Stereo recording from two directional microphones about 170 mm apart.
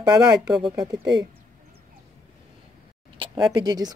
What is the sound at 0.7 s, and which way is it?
Speech, 25° right (ahead or behind).